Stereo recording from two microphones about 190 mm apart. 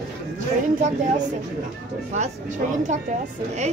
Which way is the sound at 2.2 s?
40° right (ahead or behind).